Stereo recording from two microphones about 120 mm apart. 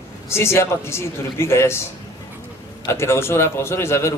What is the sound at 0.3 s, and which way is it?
Speech, 20° left (ahead or behind).